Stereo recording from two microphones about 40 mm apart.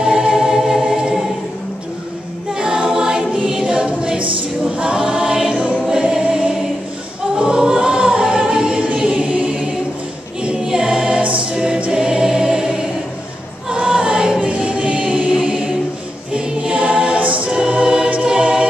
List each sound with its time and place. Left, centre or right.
0.0 s music: right
2.6 s choir: right
3.6 s choir: right
14.4 s music: right
16.3 s choir: right
17.6 s music: right
18.1 s choir: right